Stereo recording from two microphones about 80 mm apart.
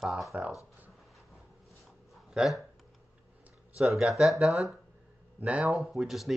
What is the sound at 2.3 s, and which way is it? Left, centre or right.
Speech, centre.